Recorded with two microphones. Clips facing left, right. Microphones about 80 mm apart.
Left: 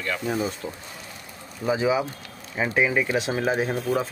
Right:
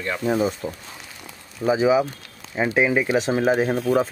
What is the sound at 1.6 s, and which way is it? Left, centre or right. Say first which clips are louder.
Speech: right 5 dB; right.